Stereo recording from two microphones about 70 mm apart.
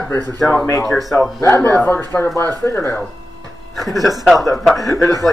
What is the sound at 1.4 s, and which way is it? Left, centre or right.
Speech, left.